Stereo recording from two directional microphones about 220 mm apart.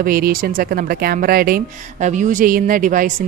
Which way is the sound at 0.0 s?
40° right (ahead or behind).